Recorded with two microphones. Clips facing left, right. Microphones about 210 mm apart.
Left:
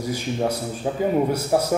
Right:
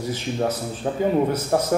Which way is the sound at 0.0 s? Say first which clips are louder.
Even; 10° left (ahead or behind).